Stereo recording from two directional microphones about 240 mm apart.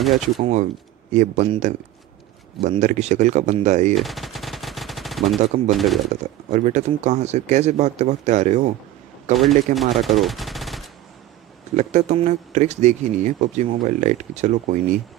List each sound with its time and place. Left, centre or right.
0.0 s speech: centre
0.4 s speech: right
3.9 s machine gun: centre
6.5 s speech: right
9.8 s speech: centre
11.7 s speech: right